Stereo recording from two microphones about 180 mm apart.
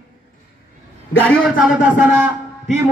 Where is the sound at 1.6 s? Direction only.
10° right (ahead or behind).